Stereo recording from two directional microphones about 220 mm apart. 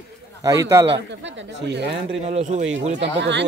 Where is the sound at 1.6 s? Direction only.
50° right (ahead or behind).